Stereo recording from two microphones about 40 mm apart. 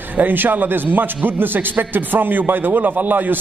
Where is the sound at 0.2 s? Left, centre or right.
Right.